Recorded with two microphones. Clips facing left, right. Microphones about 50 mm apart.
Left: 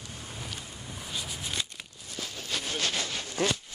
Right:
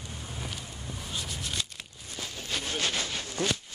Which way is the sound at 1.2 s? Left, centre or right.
Centre.